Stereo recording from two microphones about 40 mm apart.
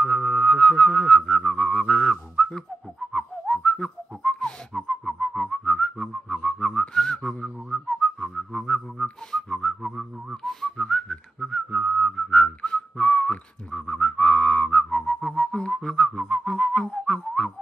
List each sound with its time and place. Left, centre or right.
0.0 s music: centre
1.7 s whistling: centre
4.7 s whistle: centre
5.2 s whistling: centre
5.7 s whistling: left
6.9 s whistling: centre
10.4 s whistling: centre
10.8 s whistling: centre
11.3 s whistling: centre
12.3 s whistling: left
15.3 s music: centre
17.0 s whistling: left